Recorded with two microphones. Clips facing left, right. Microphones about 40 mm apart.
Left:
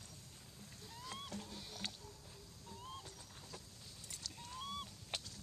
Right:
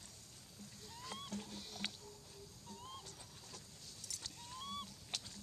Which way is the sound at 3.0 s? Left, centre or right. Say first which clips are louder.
Left 1 dB; centre.